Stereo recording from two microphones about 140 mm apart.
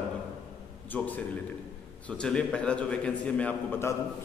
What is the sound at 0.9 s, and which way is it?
A man's voice, 10° left (ahead or behind).